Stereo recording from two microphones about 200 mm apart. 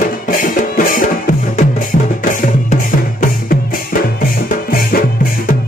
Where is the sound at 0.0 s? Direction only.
45° left (ahead or behind).